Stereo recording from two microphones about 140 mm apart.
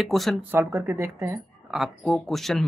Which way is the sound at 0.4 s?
15° right (ahead or behind).